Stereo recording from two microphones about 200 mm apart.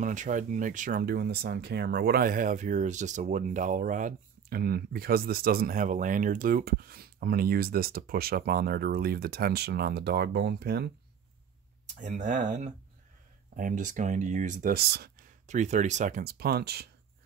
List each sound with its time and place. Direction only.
0.0 s speech: 40° right (ahead or behind); by 10.9 s 55° right (ahead or behind)
12.0 s speech: 40° right (ahead or behind)
15.4 s speech: 35° right (ahead or behind); by 16.9 s 55° right (ahead or behind)